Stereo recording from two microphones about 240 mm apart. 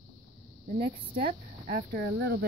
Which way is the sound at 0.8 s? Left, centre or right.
Right.